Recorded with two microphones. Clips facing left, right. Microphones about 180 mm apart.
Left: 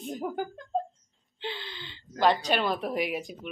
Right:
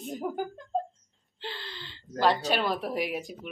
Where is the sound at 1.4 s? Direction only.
Centre (ahead or behind).